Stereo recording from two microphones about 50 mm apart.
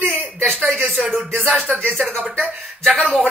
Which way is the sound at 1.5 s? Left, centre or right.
Centre.